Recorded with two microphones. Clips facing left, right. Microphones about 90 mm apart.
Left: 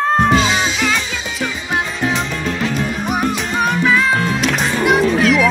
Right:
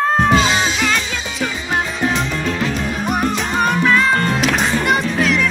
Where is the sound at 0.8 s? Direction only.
Centre (ahead or behind).